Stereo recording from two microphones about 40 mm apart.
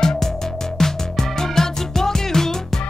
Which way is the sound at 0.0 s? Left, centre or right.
Centre.